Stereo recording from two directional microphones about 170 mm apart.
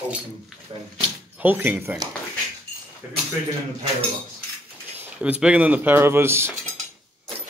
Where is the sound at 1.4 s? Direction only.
10° right (ahead or behind).